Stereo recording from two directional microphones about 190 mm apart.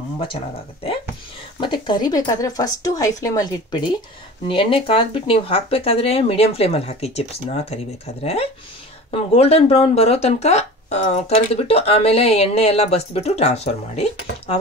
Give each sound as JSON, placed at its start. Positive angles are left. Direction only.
{"t": 1.6, "sound": "speech", "side_deg": 25}